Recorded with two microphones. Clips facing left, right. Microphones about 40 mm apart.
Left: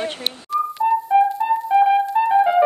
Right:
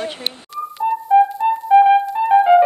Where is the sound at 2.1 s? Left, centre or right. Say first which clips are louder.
Left 1 dB; centre.